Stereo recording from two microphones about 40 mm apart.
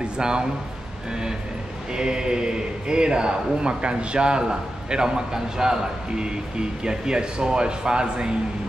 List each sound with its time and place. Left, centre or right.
0.0 s speech: right
1.9 s a man's voice: right